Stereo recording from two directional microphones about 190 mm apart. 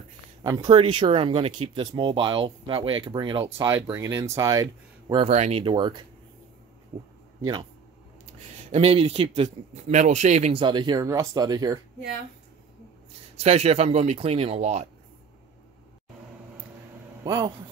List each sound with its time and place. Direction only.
0.4 s a man's voice: 25° right (ahead or behind)
5.3 s a man's voice: 35° right (ahead or behind)
8.5 s a man's voice: 30° right (ahead or behind)
13.4 s speech: 35° right (ahead or behind)
17.2 s a man's voice: 20° right (ahead or behind)